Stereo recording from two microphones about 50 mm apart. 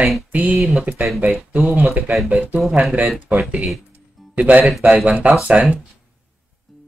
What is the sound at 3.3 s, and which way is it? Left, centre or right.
Speech, right.